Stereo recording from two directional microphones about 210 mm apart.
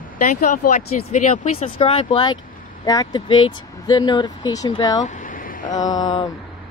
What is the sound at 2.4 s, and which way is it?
Vehicle, 40° left (ahead or behind).